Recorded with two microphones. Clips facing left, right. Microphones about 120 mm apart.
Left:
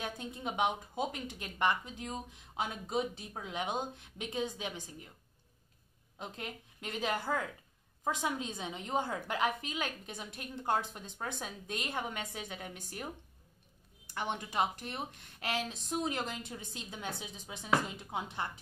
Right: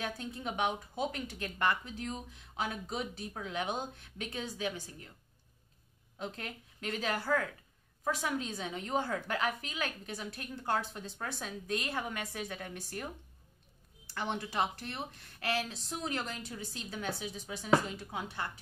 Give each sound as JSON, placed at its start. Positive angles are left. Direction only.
{"t": 0.0, "sound": "a woman's voice", "side_deg": 20}
{"t": 6.1, "sound": "a woman's voice", "side_deg": 20}